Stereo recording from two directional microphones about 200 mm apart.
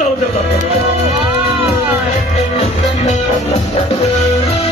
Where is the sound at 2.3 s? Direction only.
30° left (ahead or behind).